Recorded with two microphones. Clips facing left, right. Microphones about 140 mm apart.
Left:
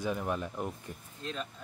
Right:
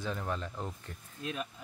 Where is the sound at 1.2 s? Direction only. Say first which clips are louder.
Right 1 dB; 10° right (ahead or behind).